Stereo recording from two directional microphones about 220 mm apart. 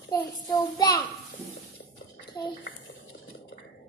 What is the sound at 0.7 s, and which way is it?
Speech, 15° left (ahead or behind).